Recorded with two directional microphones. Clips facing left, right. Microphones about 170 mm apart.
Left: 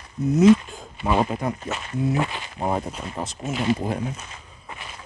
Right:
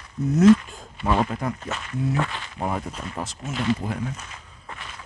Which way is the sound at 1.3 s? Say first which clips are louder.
Left 2 dB; 20° left (ahead or behind).